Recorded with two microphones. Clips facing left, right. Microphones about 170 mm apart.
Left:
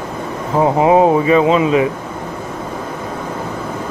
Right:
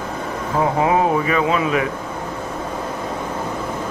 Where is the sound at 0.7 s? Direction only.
25° left (ahead or behind).